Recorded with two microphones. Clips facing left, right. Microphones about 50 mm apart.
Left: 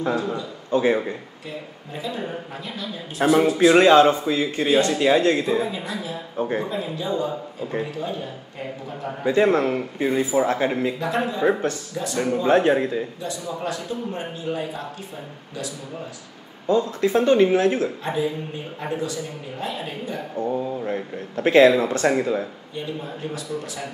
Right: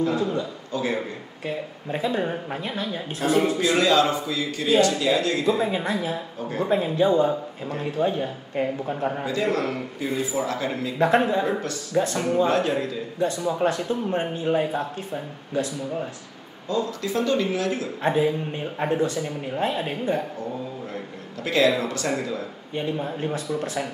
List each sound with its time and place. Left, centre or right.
0.0 s a man's voice: left
1.9 s a man's voice: right
3.2 s a man's voice: left
5.6 s a man's voice: right
9.2 s a man's voice: left
11.0 s a man's voice: right
12.4 s a man's voice: left
13.2 s a man's voice: right
16.6 s a man's voice: left
18.0 s a man's voice: right
20.3 s a man's voice: left
22.8 s a man's voice: right